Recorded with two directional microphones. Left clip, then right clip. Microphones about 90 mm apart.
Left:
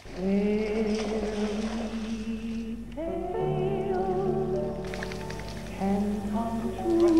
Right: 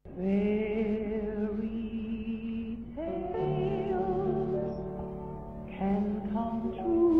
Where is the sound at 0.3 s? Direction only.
30° left (ahead or behind).